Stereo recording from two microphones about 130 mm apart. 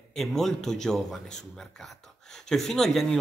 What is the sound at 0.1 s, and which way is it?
A man's voice, centre (ahead or behind).